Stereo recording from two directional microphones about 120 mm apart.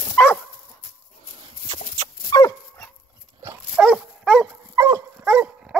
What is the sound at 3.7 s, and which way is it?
Dog, centre (ahead or behind).